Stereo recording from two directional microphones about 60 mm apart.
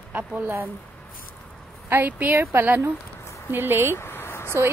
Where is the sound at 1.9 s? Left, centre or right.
Right.